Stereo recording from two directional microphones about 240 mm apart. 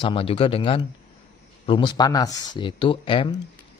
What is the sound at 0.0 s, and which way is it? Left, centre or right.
Speech, left.